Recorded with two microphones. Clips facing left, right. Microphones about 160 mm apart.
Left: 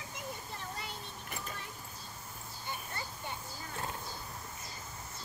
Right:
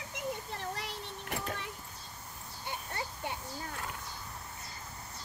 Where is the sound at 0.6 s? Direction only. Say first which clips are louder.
Right 4 dB; 70° right (ahead or behind).